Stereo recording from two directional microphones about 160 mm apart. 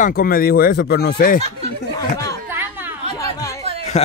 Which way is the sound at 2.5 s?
15° right (ahead or behind).